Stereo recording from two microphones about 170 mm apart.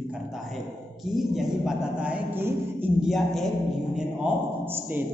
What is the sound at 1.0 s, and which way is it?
A man's voice, centre (ahead or behind).